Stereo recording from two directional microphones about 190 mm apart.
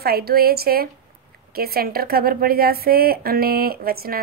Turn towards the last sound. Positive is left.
turn(degrees=-50)  # may be behind; listen again after turning